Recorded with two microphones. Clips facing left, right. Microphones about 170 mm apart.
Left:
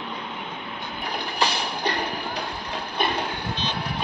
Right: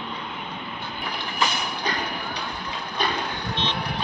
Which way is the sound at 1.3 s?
35° left (ahead or behind).